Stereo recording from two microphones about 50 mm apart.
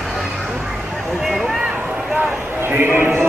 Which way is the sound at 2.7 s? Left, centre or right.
Right.